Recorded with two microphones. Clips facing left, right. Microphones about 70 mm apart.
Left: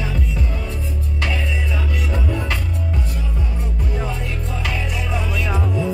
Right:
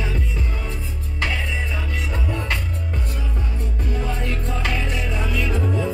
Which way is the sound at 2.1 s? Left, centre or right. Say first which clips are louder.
Left 3 dB; centre.